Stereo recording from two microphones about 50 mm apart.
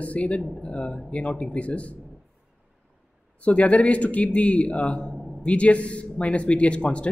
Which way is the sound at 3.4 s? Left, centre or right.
Left.